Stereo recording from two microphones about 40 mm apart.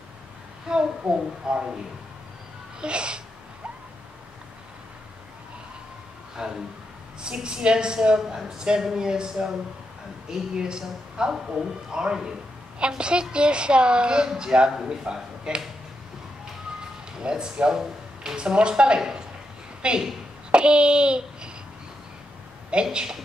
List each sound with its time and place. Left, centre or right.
0.7 s a woman's voice: centre
2.8 s a woman's voice: right
6.3 s a man's voice: centre
17.2 s a woman's voice: right
20.5 s a sound: right
22.8 s speech: centre